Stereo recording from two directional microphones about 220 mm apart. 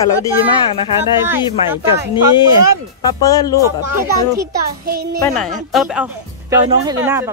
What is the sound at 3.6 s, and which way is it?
Speech, 15° right (ahead or behind).